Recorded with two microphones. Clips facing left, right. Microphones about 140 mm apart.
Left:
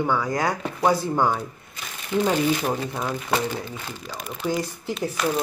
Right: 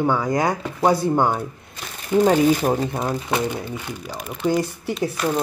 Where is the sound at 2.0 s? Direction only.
40° right (ahead or behind).